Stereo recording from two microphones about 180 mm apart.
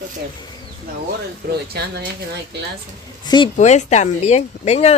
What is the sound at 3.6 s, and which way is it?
Speech, 40° left (ahead or behind).